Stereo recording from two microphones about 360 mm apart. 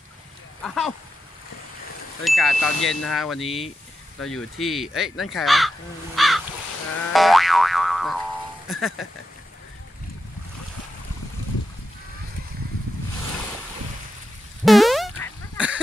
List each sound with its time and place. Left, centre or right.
0.7 s speech: centre
2.2 s speech: centre
3.4 s speech: centre
4.2 s speech: centre
6.1 s crow: centre
7.1 s boing: centre
8.6 s speech: centre
14.6 s a sound: centre